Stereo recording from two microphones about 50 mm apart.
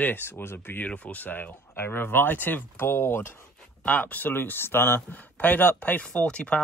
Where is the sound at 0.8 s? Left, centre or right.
Left.